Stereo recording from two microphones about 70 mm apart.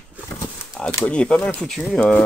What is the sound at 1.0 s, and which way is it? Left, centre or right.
Speech, centre.